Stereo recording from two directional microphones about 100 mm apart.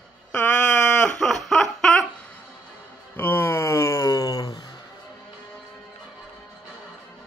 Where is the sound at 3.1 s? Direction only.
20° left (ahead or behind); by 4.8 s 45° left (ahead or behind).